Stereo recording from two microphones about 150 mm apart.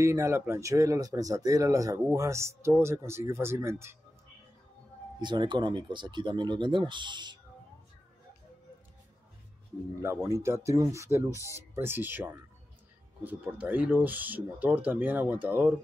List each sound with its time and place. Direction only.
0.0 s speech: 20° right (ahead or behind)
5.2 s speech: 30° right (ahead or behind)
10.2 s speech: 20° right (ahead or behind)